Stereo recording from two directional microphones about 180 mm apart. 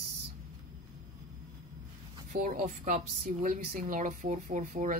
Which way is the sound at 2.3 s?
45° right (ahead or behind).